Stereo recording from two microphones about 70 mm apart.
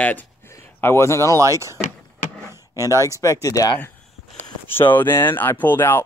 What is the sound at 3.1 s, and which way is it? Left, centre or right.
Speech, left.